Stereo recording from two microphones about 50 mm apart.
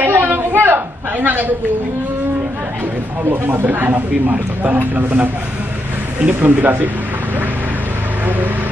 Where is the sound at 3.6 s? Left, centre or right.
Right.